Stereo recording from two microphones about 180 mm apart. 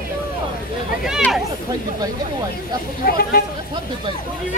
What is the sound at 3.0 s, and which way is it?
Speech, 55° left (ahead or behind).